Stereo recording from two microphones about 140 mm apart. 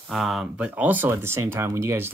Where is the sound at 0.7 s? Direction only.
15° right (ahead or behind).